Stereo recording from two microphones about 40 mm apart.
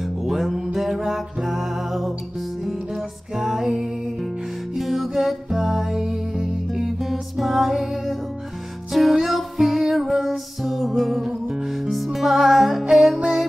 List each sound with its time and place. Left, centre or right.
0.0 s music: centre
3.3 s music: centre
11.7 s music: centre